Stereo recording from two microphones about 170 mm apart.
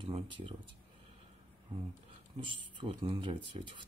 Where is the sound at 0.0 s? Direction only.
30° right (ahead or behind).